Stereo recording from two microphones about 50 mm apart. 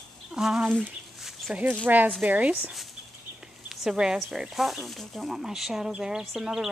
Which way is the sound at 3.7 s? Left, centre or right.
Centre.